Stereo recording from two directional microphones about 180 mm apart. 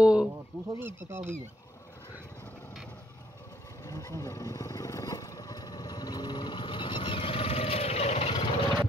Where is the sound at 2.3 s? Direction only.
10° left (ahead or behind).